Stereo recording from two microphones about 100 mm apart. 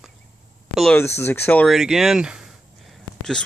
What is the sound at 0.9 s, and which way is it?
Speech, 25° left (ahead or behind).